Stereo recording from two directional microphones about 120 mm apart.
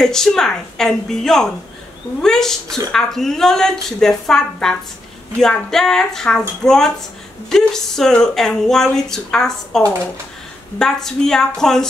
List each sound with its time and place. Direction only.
0.0 s speech: 5° left (ahead or behind)
9.8 s speech: 25° right (ahead or behind)
10.8 s speech: 5° left (ahead or behind)